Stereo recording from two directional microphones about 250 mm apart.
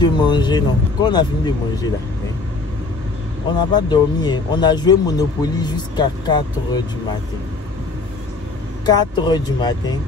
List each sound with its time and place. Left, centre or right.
0.0 s speech: centre
3.7 s speech: centre
8.8 s speech: centre